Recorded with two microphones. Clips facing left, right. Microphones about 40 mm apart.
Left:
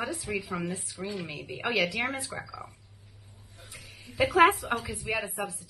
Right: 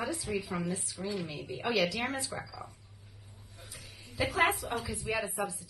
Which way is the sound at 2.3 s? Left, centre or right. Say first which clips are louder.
Left 2 dB; centre.